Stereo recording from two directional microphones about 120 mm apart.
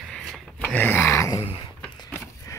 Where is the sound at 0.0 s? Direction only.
5° left (ahead or behind).